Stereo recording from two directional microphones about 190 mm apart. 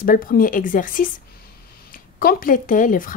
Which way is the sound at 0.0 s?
50° left (ahead or behind).